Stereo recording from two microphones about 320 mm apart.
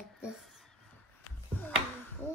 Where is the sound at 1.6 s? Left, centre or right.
Centre.